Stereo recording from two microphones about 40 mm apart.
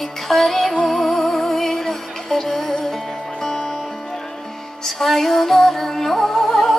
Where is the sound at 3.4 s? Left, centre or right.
Centre.